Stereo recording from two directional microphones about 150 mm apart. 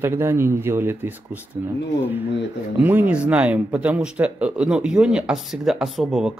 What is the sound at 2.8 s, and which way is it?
Speech, 10° right (ahead or behind).